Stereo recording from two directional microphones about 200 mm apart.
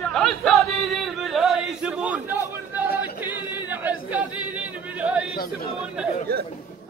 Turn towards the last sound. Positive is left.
turn(degrees=-50)  # may be behind; listen again after turning